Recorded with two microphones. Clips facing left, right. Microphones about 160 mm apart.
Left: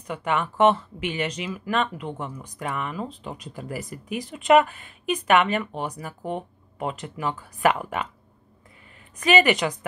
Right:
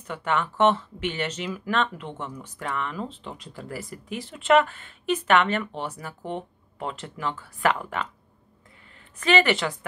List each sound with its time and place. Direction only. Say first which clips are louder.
0.0 s speech: left 1 dB; 10° left (ahead or behind)
9.2 s speech: left 2 dB; 15° left (ahead or behind)